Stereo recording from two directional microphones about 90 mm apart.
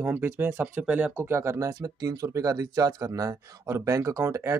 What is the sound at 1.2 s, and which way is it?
Speech, 30° right (ahead or behind).